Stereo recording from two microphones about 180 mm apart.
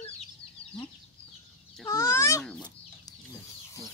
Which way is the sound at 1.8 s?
15° left (ahead or behind).